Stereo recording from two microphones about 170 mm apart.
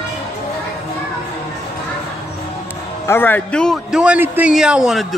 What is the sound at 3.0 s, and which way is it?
A man's voice, 10° left (ahead or behind).